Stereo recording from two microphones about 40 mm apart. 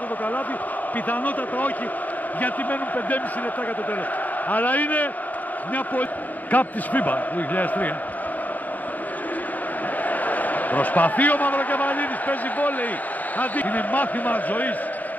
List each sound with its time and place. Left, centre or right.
1.0 s speech: left
4.5 s speech: left
6.5 s speech: left
10.0 s a man's voice: left